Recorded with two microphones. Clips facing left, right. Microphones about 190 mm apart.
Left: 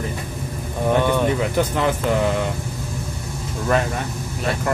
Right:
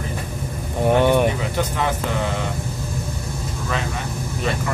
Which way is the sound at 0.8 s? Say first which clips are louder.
Right 3 dB; 20° right (ahead or behind).